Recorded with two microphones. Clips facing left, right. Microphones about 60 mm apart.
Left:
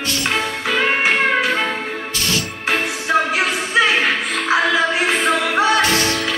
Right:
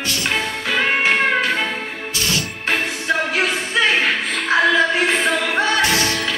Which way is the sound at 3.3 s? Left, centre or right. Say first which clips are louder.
Left 1 dB; centre.